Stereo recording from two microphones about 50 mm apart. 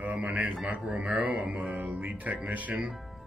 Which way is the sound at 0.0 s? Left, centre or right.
Right.